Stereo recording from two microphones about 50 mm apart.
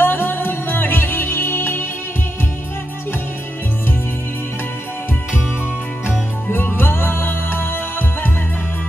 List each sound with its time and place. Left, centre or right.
0.0 s music: left
6.0 s music: left